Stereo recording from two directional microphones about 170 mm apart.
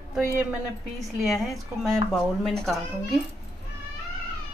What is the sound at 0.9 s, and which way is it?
Speech, centre (ahead or behind).